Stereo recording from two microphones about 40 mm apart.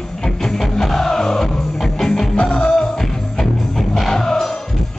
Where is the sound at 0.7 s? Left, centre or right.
Centre.